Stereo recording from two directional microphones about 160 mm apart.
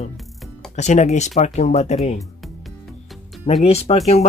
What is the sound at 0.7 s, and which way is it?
Speech, 45° left (ahead or behind).